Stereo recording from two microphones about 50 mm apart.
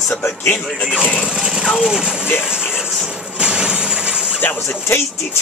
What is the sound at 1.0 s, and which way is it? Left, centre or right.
Speech, centre.